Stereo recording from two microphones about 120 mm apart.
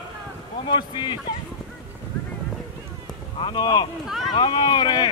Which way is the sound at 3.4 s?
40° left (ahead or behind).